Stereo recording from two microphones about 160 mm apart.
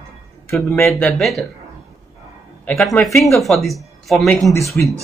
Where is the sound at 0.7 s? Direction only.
15° left (ahead or behind).